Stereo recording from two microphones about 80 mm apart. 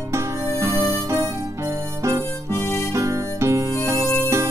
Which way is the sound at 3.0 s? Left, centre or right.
Right.